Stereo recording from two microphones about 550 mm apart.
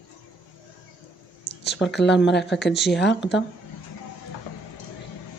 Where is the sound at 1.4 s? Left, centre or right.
Centre.